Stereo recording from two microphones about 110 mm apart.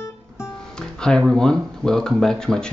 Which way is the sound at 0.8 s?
5° left (ahead or behind).